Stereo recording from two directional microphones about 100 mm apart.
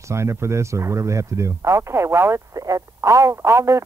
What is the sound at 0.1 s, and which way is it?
Speech, 30° right (ahead or behind).